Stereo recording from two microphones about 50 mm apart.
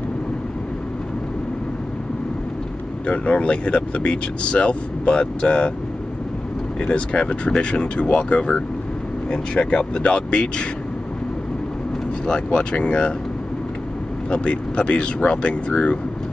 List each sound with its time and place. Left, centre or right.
3.1 s speech: left
6.9 s speech: left
12.3 s speech: centre
14.3 s speech: centre